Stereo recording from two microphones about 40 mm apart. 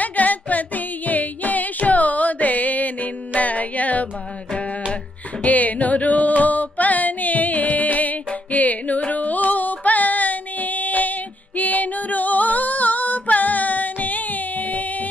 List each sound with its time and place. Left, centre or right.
0.0 s music: left
5.4 s music: left